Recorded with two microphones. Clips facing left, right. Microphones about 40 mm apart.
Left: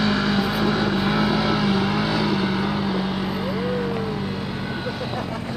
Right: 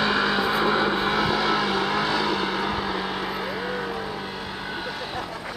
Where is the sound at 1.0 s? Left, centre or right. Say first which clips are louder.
Left 1 dB; centre.